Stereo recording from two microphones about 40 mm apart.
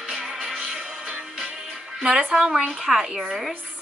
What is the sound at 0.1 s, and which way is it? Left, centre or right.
Music, centre.